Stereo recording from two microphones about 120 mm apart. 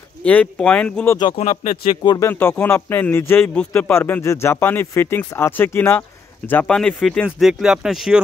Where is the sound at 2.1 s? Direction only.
20° left (ahead or behind).